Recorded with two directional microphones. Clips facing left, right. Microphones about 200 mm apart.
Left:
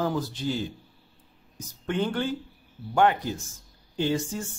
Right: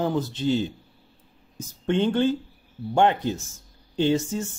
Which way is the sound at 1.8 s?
25° right (ahead or behind).